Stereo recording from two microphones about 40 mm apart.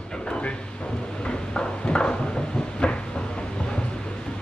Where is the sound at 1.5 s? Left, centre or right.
Left.